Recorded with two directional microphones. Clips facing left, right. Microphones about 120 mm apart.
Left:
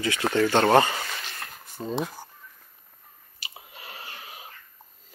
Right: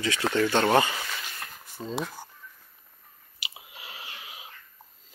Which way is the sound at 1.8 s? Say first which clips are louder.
Left 3 dB; centre (ahead or behind).